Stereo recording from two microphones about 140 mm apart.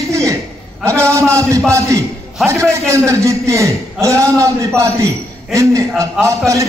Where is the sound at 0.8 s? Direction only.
20° right (ahead or behind).